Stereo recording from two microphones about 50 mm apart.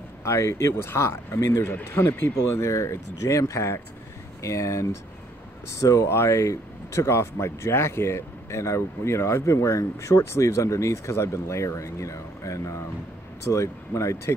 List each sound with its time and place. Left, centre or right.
0.2 s speech: left
2.0 s speech: left
2.7 s speech: left
4.4 s speech: left
13.5 s speech: left